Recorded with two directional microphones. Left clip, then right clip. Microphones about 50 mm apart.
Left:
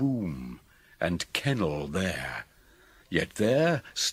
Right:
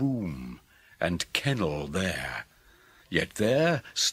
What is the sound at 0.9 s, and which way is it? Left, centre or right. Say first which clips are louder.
Speech: right 1 dB; centre.